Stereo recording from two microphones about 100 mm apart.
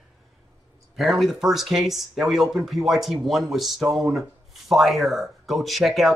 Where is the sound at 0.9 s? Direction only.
Centre (ahead or behind).